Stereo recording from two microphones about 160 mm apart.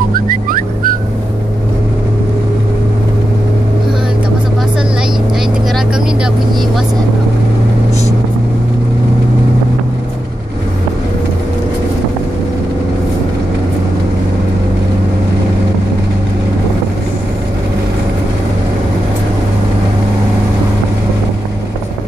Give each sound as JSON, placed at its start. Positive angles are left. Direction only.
{"t": 0.3, "sound": "music", "side_deg": -60}